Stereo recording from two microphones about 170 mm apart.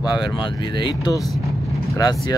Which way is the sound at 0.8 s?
25° left (ahead or behind).